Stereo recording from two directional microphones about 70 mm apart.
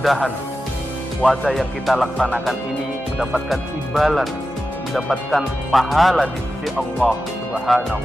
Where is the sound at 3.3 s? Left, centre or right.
Centre.